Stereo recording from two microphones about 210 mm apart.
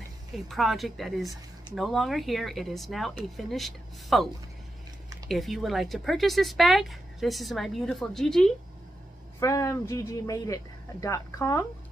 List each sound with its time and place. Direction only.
0.5 s speech: centre (ahead or behind)
5.3 s speech: centre (ahead or behind)
9.4 s speech: 15° left (ahead or behind)